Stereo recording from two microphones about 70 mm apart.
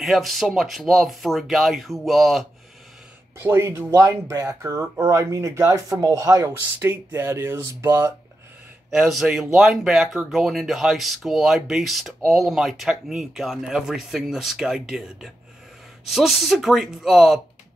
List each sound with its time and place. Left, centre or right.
0.0 s speech: centre
3.3 s speech: right
4.3 s speech: right
6.8 s speech: right
9.1 s speech: centre